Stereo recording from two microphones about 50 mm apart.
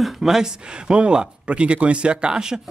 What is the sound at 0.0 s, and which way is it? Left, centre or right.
Speech, centre.